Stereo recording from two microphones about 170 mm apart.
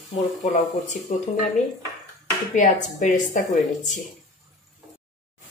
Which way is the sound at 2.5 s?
50° left (ahead or behind).